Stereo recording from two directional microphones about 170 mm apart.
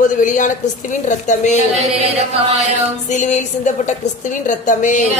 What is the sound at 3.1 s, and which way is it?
Speech, 45° left (ahead or behind).